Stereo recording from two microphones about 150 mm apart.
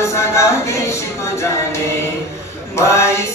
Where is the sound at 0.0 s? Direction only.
20° left (ahead or behind).